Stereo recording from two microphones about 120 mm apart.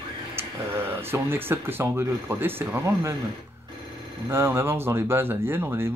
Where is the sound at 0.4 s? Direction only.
20° right (ahead or behind).